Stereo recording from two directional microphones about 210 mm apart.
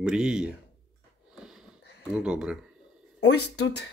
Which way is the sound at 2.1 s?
5° right (ahead or behind).